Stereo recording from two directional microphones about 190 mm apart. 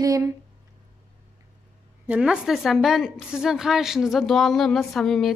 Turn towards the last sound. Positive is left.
turn(degrees=0)  # may be behind; listen again after turning